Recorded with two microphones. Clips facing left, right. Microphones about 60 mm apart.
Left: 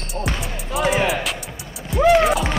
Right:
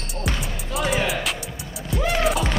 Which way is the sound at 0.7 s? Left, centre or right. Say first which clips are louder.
Left 5 dB; centre.